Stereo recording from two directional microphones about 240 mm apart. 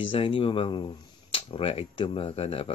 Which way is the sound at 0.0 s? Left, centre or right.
Left.